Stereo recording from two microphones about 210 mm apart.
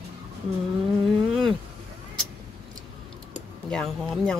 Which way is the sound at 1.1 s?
Centre (ahead or behind).